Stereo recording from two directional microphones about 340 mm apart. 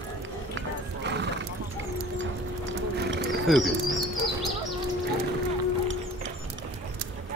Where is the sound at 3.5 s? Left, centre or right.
Centre.